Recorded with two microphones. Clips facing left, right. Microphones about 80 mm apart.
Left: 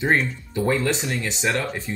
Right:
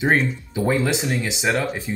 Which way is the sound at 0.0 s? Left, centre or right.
Centre.